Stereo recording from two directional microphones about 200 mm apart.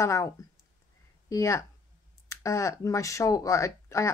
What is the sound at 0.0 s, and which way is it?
Speech, 15° left (ahead or behind).